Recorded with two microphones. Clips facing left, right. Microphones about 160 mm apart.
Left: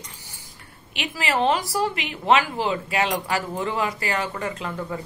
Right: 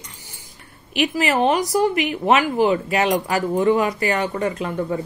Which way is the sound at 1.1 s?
20° right (ahead or behind).